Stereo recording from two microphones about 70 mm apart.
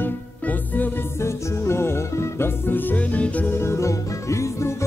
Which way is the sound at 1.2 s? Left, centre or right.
Left.